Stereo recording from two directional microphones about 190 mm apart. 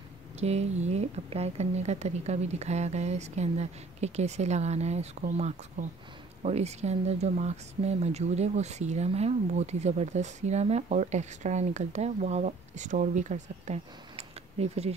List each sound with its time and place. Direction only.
0.4 s speech: 35° right (ahead or behind)